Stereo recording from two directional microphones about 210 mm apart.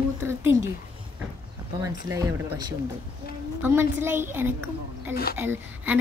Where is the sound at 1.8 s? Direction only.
15° right (ahead or behind).